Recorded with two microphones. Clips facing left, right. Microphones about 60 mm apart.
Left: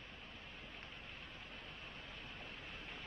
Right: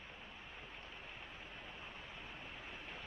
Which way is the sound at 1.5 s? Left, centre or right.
Centre.